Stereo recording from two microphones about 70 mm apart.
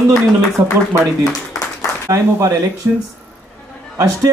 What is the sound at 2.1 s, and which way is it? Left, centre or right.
Speech, right.